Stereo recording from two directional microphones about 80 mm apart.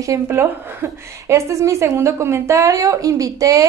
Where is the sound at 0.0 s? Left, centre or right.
Right.